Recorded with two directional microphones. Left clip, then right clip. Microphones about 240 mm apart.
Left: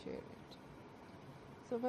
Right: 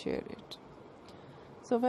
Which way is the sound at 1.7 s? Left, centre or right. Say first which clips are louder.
Right 11 dB; right.